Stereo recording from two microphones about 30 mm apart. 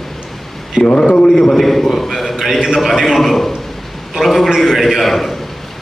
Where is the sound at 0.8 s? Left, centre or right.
Centre.